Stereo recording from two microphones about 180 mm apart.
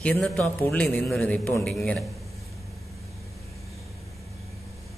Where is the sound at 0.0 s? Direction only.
5° left (ahead or behind).